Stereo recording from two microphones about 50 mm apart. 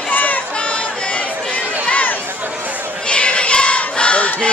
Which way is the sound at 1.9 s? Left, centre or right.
Left.